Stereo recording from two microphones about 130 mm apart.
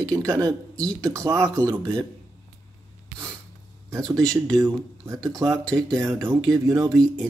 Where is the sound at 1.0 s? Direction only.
25° right (ahead or behind).